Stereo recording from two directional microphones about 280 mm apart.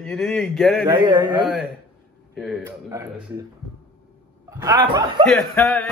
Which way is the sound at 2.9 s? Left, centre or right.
Centre.